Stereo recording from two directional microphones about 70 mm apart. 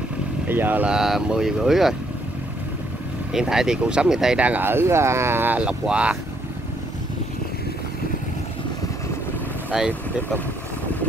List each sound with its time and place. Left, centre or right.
0.5 s speech: right
0.8 s speech: centre
3.3 s speech: centre
4.4 s speech: right
5.6 s speech: centre
9.7 s speech: centre